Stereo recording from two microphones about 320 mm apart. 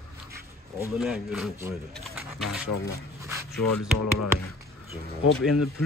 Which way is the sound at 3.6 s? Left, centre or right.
Left.